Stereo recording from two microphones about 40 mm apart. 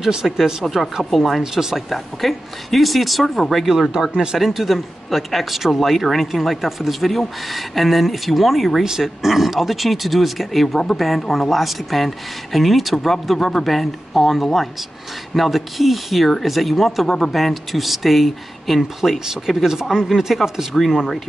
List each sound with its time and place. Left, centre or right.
0.0 s speech: centre
0.7 s speech: centre
1.4 s speech: centre
1.9 s speech: centre
4.1 s speech: right
4.4 s speech: centre